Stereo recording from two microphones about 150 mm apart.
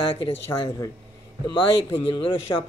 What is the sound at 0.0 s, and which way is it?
Speech, 35° left (ahead or behind).